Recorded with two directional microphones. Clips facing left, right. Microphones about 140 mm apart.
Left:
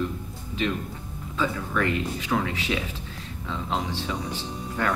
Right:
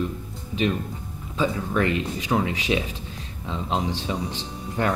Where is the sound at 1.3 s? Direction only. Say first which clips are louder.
Right 3 dB; 20° right (ahead or behind).